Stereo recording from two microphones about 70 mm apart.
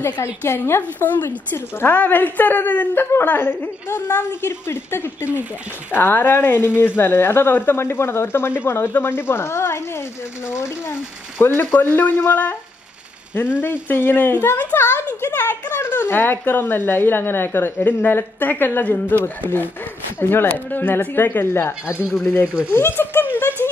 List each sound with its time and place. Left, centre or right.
0.0 s a woman's voice: left
0.9 s a woman's voice: left
13.6 s a woman's voice: left
23.6 s a sound: left